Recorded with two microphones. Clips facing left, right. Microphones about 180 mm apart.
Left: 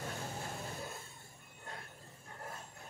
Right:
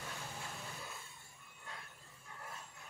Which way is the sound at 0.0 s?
40° left (ahead or behind).